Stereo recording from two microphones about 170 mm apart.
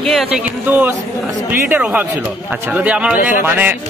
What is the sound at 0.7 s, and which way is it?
A man's voice, 10° right (ahead or behind).